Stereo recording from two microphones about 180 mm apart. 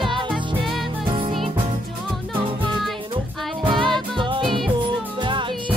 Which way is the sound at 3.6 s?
25° right (ahead or behind).